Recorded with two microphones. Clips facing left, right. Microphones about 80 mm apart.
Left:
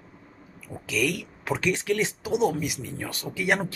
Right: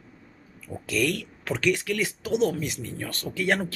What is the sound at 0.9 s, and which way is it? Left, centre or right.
Speech, centre.